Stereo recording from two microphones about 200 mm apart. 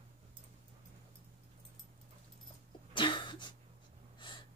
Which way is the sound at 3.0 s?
25° left (ahead or behind).